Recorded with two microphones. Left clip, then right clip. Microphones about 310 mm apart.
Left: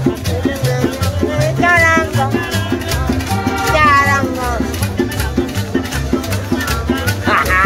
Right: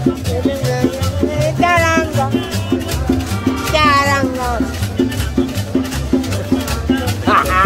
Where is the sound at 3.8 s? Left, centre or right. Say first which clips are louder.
Left 1 dB; right.